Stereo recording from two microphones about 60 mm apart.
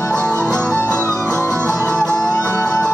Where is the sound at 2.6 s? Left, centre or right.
Centre.